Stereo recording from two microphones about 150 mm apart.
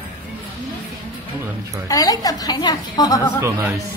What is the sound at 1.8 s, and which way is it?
A woman's voice, 25° left (ahead or behind).